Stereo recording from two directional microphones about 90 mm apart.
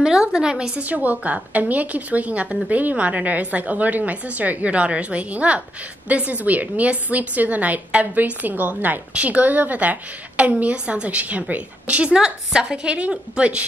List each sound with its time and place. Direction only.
0.0 s a woman's voice: 10° right (ahead or behind)